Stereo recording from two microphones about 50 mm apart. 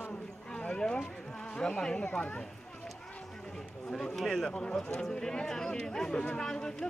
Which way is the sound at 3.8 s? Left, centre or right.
Centre.